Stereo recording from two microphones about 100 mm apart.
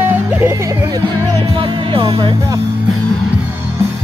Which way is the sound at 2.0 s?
40° right (ahead or behind).